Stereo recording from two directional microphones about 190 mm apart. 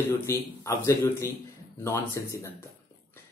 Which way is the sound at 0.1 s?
15° left (ahead or behind).